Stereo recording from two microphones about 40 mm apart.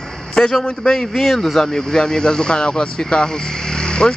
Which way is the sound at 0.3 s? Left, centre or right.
Centre.